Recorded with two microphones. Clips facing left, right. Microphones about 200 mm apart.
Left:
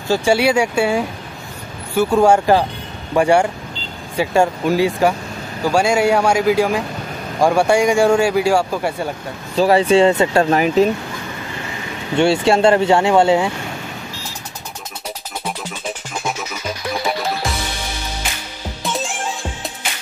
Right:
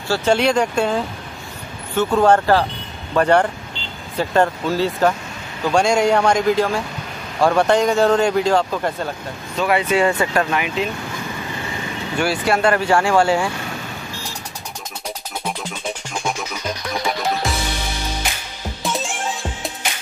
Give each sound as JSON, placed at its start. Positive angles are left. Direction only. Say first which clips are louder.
{"t": 0.1, "sound": "speech", "louder": "left 2 dB", "side_deg": 10}
{"t": 9.6, "sound": "speech", "louder": "left 5 dB", "side_deg": 35}
{"t": 12.2, "sound": "speech", "louder": "left 5 dB", "side_deg": 25}
{"t": 18.8, "sound": "music", "louder": "left 1 dB", "side_deg": 0}